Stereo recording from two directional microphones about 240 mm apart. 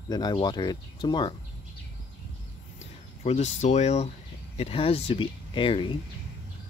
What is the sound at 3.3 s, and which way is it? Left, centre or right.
Speech, left.